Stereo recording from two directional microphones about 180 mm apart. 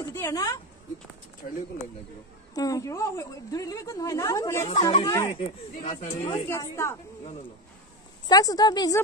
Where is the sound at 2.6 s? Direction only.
20° left (ahead or behind).